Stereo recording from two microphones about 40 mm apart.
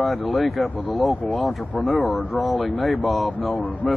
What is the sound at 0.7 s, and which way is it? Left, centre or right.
Speech, left.